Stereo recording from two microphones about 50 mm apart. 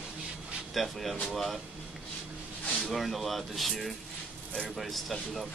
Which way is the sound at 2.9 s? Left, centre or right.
Centre.